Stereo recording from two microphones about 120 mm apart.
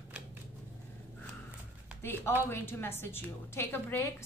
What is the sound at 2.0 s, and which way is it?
A woman's voice, 20° left (ahead or behind).